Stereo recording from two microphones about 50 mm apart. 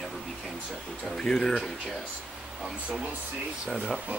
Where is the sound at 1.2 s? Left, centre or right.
Centre.